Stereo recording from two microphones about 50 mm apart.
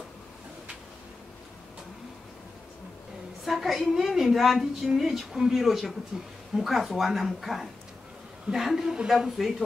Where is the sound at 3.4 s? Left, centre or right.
Centre.